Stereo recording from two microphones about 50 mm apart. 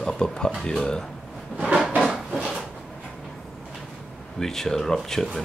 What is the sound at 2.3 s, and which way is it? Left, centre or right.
Drawer open or close, centre.